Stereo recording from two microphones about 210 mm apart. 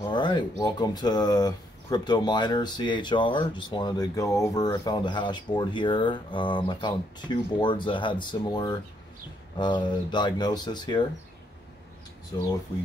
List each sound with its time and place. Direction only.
0.0 s speech: 20° left (ahead or behind)